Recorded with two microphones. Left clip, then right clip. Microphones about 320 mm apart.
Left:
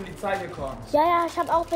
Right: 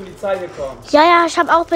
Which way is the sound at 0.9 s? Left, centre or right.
Right.